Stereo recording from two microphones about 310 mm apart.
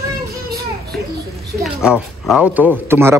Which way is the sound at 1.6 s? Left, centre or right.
Centre.